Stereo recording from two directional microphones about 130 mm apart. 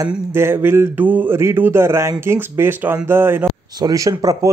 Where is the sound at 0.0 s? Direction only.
20° right (ahead or behind).